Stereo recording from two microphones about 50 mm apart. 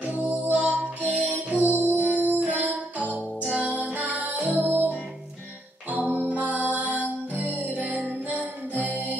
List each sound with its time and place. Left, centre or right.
0.0 s music: right
5.9 s music: right